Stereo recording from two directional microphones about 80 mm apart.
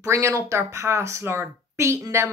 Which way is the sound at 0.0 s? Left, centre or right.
Right.